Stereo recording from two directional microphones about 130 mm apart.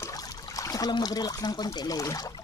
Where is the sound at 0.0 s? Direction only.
25° left (ahead or behind).